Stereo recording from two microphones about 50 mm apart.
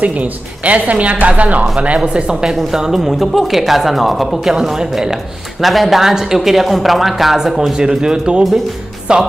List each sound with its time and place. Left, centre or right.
0.0 s a woman's voice: right
2.1 s a woman's voice: centre